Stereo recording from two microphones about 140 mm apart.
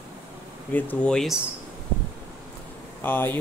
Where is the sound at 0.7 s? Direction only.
10° left (ahead or behind).